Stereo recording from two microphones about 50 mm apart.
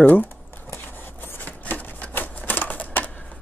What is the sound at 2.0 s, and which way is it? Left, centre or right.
Typewriter, left.